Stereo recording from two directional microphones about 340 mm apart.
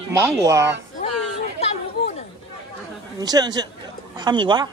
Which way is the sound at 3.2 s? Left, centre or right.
Centre.